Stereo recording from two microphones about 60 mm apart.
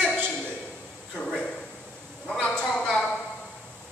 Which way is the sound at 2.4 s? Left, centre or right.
Centre.